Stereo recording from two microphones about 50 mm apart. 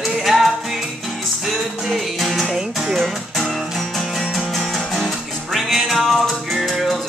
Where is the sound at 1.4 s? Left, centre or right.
Centre.